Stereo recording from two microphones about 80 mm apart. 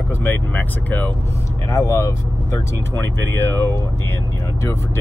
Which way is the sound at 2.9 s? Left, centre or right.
Left.